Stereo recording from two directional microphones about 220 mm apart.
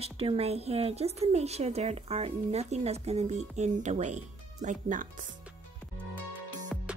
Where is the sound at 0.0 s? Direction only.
25° right (ahead or behind).